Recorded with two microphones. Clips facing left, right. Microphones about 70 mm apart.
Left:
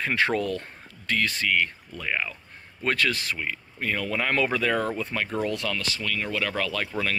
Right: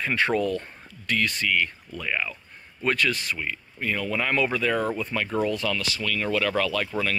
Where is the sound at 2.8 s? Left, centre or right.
Left.